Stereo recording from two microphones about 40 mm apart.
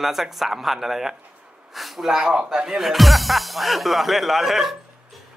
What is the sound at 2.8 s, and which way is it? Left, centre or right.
A man's voice, centre.